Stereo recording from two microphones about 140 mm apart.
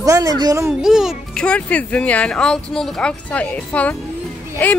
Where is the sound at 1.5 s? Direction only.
10° left (ahead or behind).